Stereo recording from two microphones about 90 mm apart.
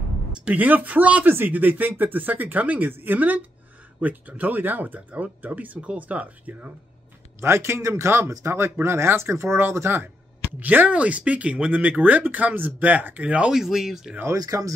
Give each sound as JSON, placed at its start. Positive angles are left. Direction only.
{"t": 0.5, "sound": "speech", "side_deg": -20}
{"t": 7.3, "sound": "speech", "side_deg": -30}
{"t": 14.3, "sound": "speech", "side_deg": -40}